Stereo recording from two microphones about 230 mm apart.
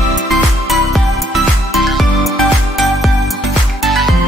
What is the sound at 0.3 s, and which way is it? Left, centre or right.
Music, centre.